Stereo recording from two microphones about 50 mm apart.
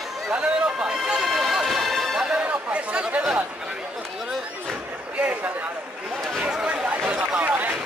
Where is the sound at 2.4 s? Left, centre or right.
Right.